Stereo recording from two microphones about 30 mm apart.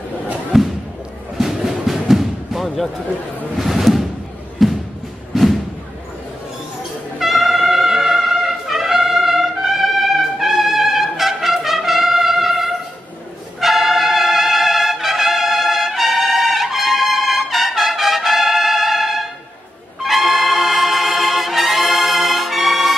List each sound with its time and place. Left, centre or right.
0.5 s thump: centre
1.4 s music: centre
3.5 s a sound: centre
7.2 s music: centre
10.4 s brass instrument: centre
13.6 s music: centre